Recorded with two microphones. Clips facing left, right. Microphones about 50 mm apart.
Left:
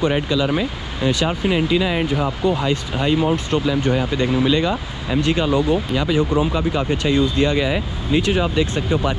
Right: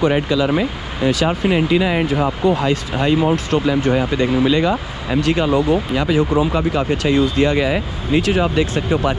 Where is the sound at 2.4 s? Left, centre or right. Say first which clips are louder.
Right 3 dB; right.